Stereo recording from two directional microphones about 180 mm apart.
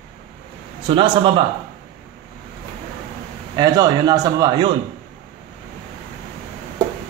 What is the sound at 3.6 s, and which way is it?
A man's voice, 20° right (ahead or behind).